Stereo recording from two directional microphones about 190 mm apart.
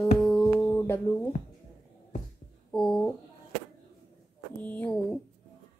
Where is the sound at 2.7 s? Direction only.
Centre (ahead or behind).